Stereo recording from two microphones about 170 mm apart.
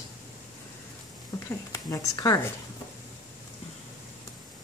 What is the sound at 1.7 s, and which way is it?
Speech, 20° left (ahead or behind).